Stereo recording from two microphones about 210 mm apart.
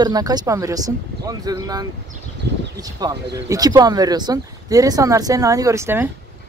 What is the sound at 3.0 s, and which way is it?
Speech, 20° right (ahead or behind).